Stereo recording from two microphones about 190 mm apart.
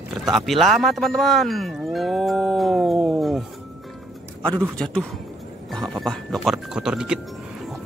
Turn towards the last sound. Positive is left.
turn(degrees=-5)  # may be behind; listen again after turning